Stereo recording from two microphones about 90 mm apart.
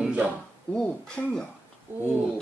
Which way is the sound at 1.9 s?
25° right (ahead or behind).